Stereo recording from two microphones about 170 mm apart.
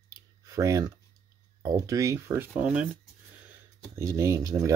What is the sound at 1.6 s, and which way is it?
Speech, 20° right (ahead or behind).